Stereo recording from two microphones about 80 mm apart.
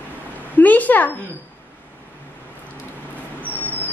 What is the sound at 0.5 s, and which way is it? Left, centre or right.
Speech, left.